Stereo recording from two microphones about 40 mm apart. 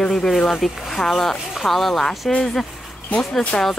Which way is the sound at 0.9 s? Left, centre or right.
Centre.